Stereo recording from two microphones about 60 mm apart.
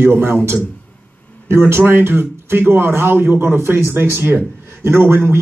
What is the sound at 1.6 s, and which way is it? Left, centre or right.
A man's voice, right.